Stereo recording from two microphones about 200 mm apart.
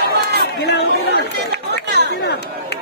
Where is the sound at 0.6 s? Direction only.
55° left (ahead or behind).